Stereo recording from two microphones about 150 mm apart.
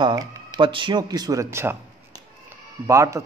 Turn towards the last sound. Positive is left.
turn(degrees=-20)  # may be behind; listen again after turning